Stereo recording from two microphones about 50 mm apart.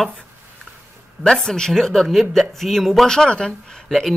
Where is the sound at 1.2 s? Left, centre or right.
Centre.